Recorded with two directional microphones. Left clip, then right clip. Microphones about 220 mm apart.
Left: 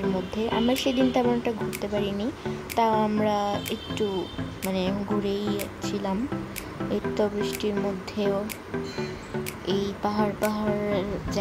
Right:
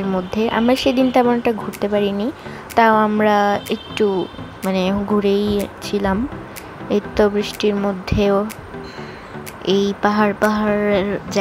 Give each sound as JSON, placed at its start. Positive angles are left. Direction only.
{"t": 0.3, "sound": "a woman's voice", "side_deg": -15}
{"t": 9.7, "sound": "a woman's voice", "side_deg": -20}